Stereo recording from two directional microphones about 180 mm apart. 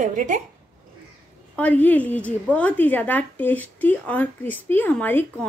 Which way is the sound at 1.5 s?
10° left (ahead or behind).